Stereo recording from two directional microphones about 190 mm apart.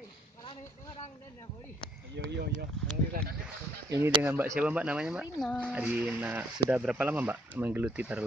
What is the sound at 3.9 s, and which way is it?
Speech, 15° right (ahead or behind).